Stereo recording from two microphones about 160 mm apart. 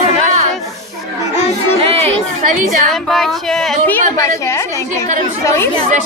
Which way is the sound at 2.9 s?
Centre (ahead or behind).